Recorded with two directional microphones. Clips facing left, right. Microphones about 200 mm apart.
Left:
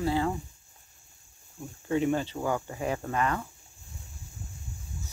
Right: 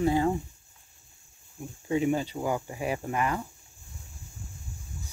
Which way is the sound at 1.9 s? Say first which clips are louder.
Even; 10° right (ahead or behind).